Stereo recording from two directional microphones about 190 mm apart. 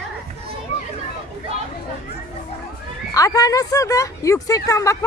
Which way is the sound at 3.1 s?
20° left (ahead or behind).